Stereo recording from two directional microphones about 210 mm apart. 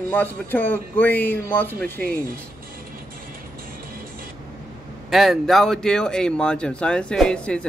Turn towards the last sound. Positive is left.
turn(degrees=5)  # may be behind; listen again after turning